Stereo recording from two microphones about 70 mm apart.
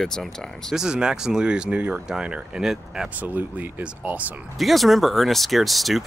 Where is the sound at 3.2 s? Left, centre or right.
Right.